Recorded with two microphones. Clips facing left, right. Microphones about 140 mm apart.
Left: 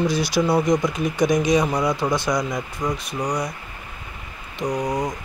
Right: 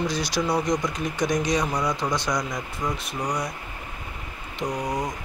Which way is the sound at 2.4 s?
25° left (ahead or behind).